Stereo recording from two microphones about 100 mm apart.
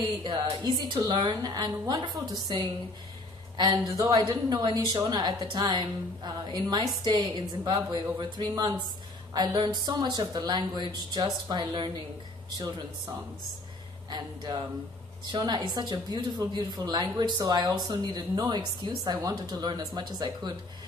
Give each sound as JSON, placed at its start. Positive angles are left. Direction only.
{"t": 0.2, "sound": "a woman's voice", "side_deg": -45}
{"t": 12.4, "sound": "speech", "side_deg": -35}
{"t": 14.1, "sound": "a woman's voice", "side_deg": -45}